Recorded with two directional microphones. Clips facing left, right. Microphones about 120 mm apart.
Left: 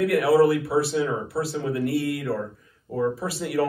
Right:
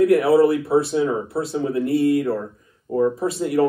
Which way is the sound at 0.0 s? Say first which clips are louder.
Right 4 dB; 25° right (ahead or behind).